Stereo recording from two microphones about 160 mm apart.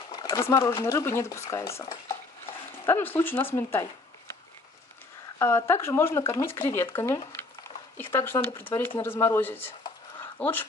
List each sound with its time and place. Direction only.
0.1 s a sound: 25° left (ahead or behind)
0.8 s speech: 15° left (ahead or behind)
5.4 s speech: 15° left (ahead or behind)
8.0 s speech: 15° left (ahead or behind)